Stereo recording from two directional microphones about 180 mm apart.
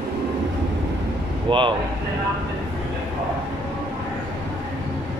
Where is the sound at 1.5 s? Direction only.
25° right (ahead or behind).